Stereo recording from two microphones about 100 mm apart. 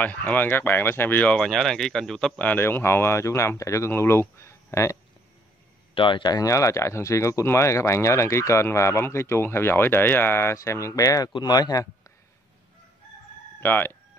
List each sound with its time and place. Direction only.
0.0 s speech: 15° left (ahead or behind)
5.9 s speech: 55° left (ahead or behind)
6.3 s speech: 35° left (ahead or behind)
13.6 s speech: 20° left (ahead or behind)